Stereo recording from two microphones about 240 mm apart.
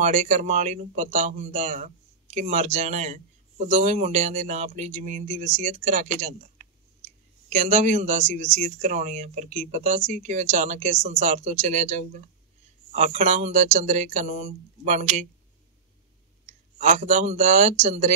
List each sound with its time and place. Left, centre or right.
0.0 s speech: right
16.4 s speech: right